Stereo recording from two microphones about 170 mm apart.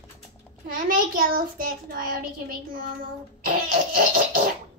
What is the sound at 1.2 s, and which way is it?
Child singing, 60° right (ahead or behind).